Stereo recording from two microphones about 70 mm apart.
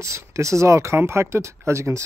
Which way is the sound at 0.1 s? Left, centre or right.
Right.